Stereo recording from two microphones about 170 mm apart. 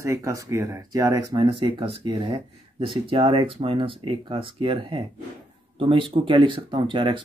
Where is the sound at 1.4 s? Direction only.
30° right (ahead or behind).